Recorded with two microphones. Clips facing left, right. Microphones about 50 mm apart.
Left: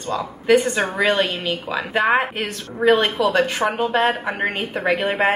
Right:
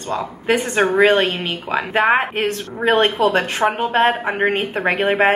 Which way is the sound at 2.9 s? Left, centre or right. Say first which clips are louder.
Right 2 dB; right.